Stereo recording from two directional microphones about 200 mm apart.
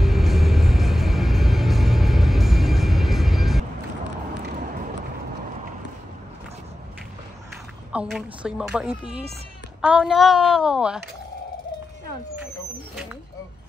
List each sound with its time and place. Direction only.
0.0 s music: centre (ahead or behind)
4.6 s a sound: 45° right (ahead or behind)
7.9 s a woman's voice: 5° right (ahead or behind)